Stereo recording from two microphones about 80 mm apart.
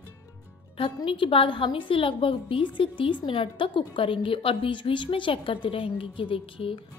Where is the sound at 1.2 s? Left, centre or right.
Left.